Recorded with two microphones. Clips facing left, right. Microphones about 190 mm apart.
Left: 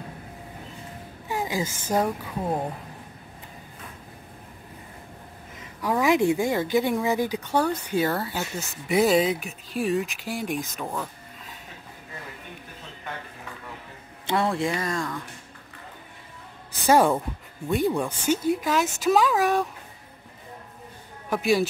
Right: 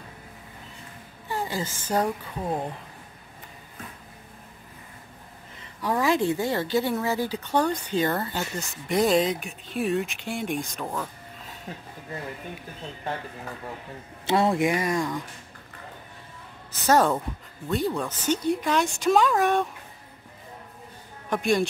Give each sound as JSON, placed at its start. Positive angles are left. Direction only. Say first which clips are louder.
{"t": 1.3, "sound": "speech", "louder": "left 2 dB", "side_deg": 10}
{"t": 5.8, "sound": "speech", "louder": "left 2 dB", "side_deg": 10}
{"t": 14.2, "sound": "speech", "louder": "right 3 dB", "side_deg": -25}
{"t": 16.8, "sound": "speech", "louder": "left 2 dB", "side_deg": 10}
{"t": 21.3, "sound": "speech", "louder": "left 1 dB", "side_deg": 5}